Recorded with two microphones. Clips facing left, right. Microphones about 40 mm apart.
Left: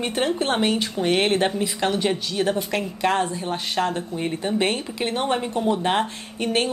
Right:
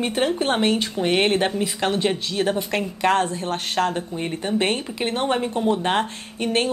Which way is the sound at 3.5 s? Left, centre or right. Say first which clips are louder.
Right 2 dB; right.